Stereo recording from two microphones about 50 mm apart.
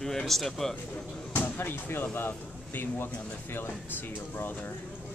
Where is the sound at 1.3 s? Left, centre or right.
Left.